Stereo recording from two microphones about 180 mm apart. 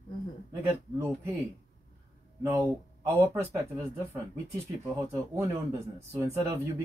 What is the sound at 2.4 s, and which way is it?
Speech, 15° right (ahead or behind).